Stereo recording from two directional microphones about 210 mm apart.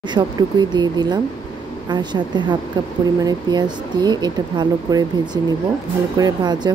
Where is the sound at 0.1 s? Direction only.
20° right (ahead or behind).